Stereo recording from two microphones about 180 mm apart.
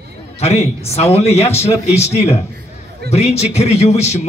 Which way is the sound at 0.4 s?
35° left (ahead or behind).